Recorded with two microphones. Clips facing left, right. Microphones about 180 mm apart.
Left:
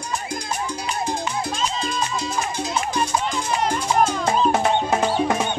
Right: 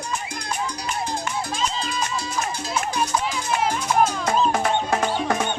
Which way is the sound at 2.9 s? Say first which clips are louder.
Left 1 dB; 5° right (ahead or behind).